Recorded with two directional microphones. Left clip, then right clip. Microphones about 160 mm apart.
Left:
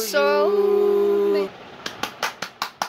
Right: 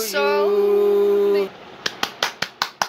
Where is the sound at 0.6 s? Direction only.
5° right (ahead or behind).